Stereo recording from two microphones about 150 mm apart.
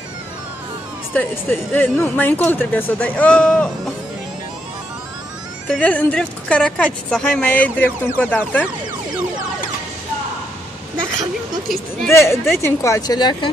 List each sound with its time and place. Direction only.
1.1 s a woman's voice: 10° left (ahead or behind)
5.7 s a woman's voice: 10° left (ahead or behind)
12.1 s a woman's voice: 15° left (ahead or behind)